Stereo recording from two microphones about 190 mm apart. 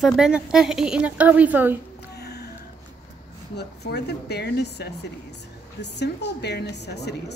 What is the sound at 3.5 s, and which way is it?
A woman's voice, 60° left (ahead or behind).